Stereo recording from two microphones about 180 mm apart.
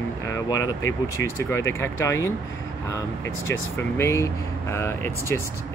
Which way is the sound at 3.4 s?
15° left (ahead or behind).